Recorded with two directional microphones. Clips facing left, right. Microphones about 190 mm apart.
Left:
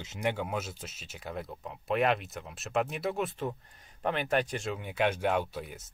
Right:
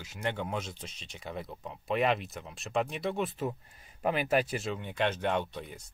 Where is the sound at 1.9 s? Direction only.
Centre (ahead or behind).